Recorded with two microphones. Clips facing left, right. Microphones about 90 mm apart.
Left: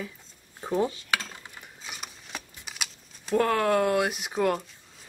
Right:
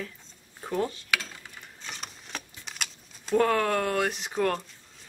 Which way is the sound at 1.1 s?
20° left (ahead or behind).